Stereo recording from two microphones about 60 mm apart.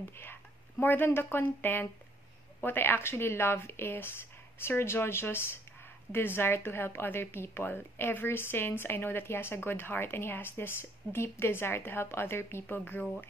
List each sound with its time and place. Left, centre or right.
0.1 s a woman's voice: left